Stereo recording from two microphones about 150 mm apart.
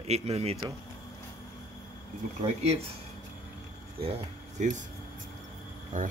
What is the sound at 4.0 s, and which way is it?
Speech, 40° right (ahead or behind).